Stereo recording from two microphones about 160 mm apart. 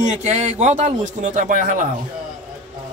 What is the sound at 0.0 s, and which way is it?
Speech, 45° right (ahead or behind).